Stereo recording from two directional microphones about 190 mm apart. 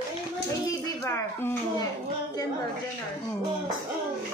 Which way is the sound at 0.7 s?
15° left (ahead or behind).